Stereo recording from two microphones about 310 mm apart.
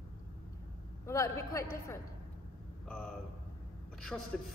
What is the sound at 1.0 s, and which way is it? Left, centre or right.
Speech, centre.